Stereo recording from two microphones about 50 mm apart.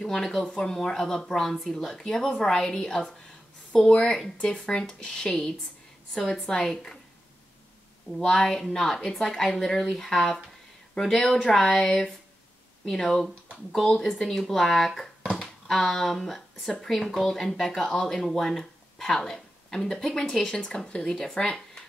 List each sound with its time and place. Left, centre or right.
0.0 s speech: centre
8.2 s speech: centre